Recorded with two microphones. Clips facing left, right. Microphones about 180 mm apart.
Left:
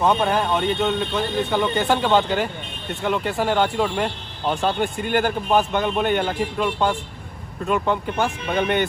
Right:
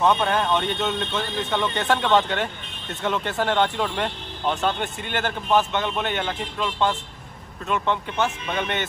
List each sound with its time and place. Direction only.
0.1 s speech: 5° left (ahead or behind)
4.6 s a man's voice: 40° left (ahead or behind)